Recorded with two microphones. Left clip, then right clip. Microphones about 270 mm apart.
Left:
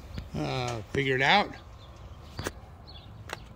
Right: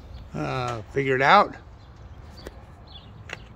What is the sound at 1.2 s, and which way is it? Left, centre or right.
Speech, centre.